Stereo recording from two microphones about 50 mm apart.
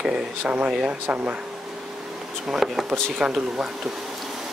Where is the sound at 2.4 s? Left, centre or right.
Centre.